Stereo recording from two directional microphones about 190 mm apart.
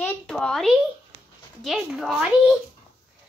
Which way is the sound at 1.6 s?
Centre (ahead or behind).